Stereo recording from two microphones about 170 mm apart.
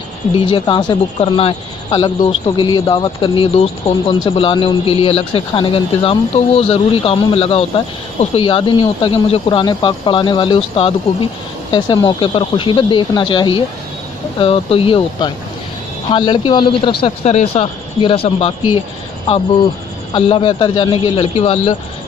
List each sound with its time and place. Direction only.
0.5 s a man's voice: 25° left (ahead or behind)
17.0 s a man's voice: 40° left (ahead or behind)
20.2 s a man's voice: 35° left (ahead or behind)